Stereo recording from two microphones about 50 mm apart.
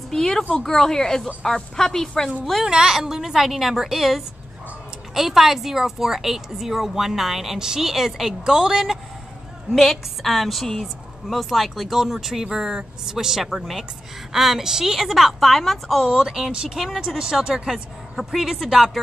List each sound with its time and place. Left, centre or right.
0.1 s a woman's voice: centre
2.6 s a woman's voice: centre
9.7 s a woman's voice: centre
16.1 s a woman's voice: centre